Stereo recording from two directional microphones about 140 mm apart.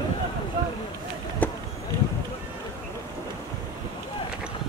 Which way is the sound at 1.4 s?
10° left (ahead or behind).